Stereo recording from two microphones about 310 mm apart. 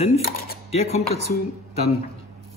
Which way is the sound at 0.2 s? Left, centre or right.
Left.